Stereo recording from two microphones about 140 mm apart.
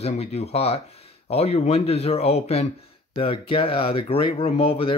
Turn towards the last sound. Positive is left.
turn(degrees=40)  # may be behind; listen again after turning